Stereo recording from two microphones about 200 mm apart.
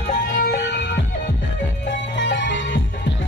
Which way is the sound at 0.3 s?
55° left (ahead or behind).